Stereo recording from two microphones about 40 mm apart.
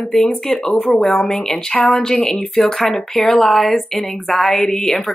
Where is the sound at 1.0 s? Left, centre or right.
Centre.